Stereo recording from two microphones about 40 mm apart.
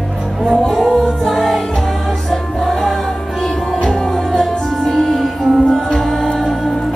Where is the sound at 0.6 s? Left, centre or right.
Centre.